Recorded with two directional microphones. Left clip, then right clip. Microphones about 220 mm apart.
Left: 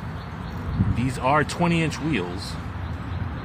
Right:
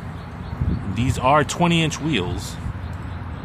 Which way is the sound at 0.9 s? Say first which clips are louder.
Right 4 dB; 20° right (ahead or behind).